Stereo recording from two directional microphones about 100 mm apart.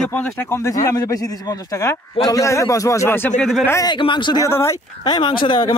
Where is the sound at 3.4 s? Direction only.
Centre (ahead or behind).